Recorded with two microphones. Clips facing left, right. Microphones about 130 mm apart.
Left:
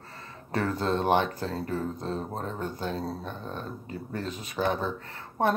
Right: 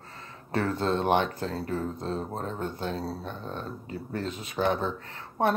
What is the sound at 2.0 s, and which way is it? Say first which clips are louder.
Speech: even; 35° right (ahead or behind).